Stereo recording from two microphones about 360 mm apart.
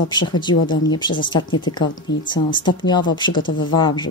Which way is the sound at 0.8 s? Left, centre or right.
Centre.